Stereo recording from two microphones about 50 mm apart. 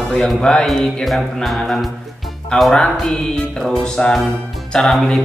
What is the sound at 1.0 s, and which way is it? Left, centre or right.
Mantra, centre.